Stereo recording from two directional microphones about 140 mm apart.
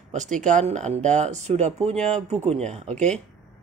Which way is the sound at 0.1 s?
60° right (ahead or behind).